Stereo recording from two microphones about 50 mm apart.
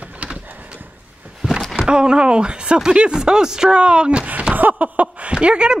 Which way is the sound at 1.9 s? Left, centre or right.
Centre.